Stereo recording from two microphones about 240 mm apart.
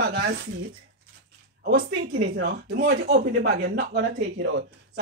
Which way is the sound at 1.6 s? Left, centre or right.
Right.